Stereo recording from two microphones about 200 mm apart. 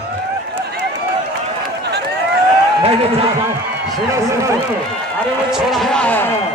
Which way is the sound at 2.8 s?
30° right (ahead or behind).